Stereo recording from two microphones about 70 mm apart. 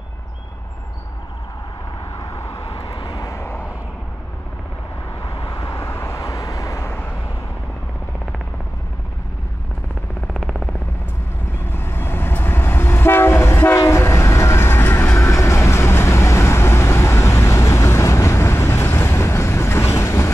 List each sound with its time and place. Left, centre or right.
2.1 s vehicle: left
5.3 s vehicle: left
6.2 s vehicle: left
6.9 s vehicle: left
10.2 s a sound: centre
11.6 s train: left